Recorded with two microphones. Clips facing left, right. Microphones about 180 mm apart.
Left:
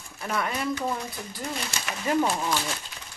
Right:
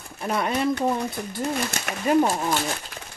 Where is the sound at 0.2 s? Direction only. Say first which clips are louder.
Right 4 dB; 25° right (ahead or behind).